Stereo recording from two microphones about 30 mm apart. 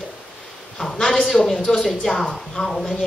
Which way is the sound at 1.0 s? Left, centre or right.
Centre.